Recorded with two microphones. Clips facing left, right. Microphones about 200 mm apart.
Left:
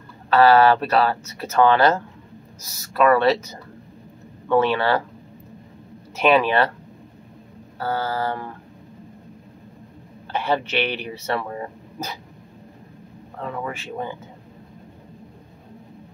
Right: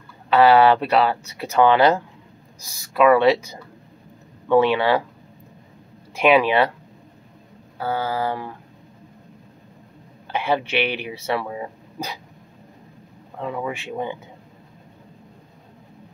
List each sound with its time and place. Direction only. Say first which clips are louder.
0.3 s speech: even; 15° right (ahead or behind)
6.1 s speech: right 1 dB; 10° right (ahead or behind)
7.8 s speech: right 1 dB; 10° right (ahead or behind)
10.3 s speech: right 1 dB; 10° right (ahead or behind)
13.4 s speech: right 2 dB; 10° right (ahead or behind)